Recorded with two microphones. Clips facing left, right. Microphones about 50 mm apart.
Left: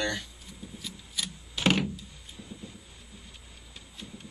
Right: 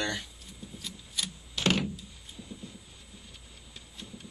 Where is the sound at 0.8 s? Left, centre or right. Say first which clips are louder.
Even; centre.